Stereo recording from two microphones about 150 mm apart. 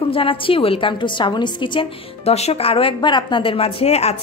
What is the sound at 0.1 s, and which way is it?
A woman's voice, 35° left (ahead or behind).